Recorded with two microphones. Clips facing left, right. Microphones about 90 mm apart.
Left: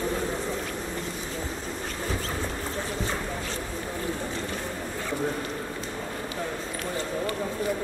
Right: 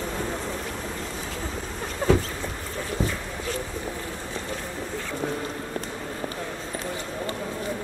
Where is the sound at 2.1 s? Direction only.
90° right.